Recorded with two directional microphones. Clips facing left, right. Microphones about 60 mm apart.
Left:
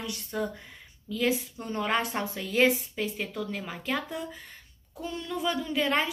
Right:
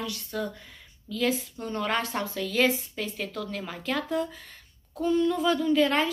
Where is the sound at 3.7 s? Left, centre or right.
Centre.